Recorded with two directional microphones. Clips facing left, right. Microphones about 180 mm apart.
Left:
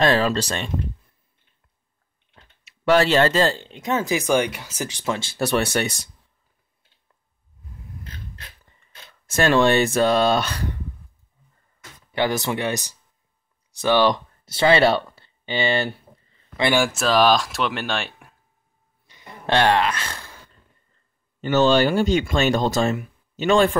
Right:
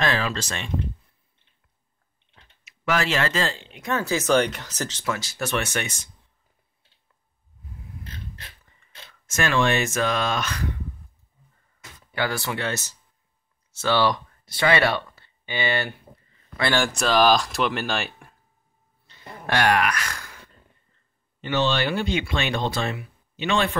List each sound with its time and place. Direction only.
0.0 s speech: 35° left (ahead or behind)
2.6 s speech: 35° left (ahead or behind)
3.8 s speech: 15° left (ahead or behind)
5.0 s speech: 25° left (ahead or behind)
9.2 s speech: 35° left (ahead or behind)
12.2 s speech: 20° left (ahead or behind)
13.7 s a sound: 15° left (ahead or behind)
16.6 s speech: 10° left (ahead or behind)
19.1 s a sound: 10° left (ahead or behind)
19.4 s speech: 25° left (ahead or behind)
21.4 s speech: 45° left (ahead or behind)